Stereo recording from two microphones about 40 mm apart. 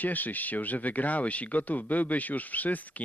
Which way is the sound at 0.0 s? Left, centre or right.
Left.